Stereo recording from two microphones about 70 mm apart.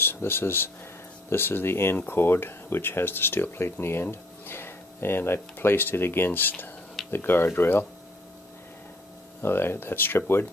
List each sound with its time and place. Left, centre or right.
0.0 s speech: left
9.4 s speech: left